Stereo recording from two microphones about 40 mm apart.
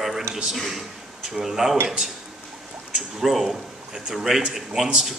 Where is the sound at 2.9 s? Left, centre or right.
Centre.